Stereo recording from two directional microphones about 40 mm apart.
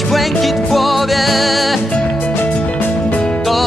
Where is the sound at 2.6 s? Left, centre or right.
Left.